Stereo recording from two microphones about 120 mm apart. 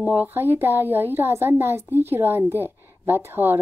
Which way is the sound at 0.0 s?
15° right (ahead or behind).